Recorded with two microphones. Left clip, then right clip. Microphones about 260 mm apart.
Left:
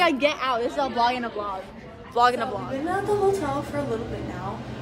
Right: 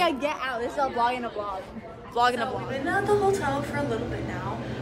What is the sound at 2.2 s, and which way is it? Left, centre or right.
Speech, centre.